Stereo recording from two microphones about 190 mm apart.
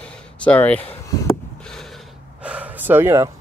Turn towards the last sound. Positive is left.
turn(degrees=-15)  # may be behind; listen again after turning